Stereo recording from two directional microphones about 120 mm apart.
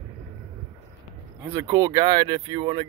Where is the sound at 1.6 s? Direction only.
30° right (ahead or behind).